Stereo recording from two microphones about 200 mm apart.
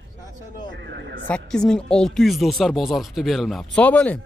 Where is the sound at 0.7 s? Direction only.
60° right (ahead or behind).